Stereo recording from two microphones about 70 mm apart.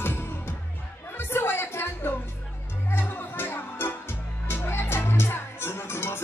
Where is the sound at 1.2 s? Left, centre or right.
Left.